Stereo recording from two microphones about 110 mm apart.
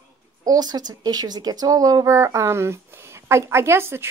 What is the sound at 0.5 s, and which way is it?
A woman's voice, 35° right (ahead or behind).